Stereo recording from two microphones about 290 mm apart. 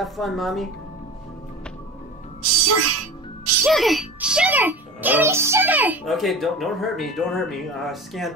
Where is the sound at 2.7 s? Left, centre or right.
Right.